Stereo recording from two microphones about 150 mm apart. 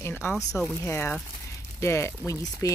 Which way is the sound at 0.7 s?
15° left (ahead or behind).